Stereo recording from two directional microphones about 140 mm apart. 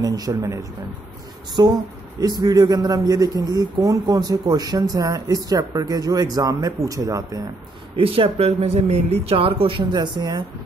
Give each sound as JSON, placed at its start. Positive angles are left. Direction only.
{"t": 0.0, "sound": "speech", "side_deg": -25}
{"t": 8.0, "sound": "speech", "side_deg": -45}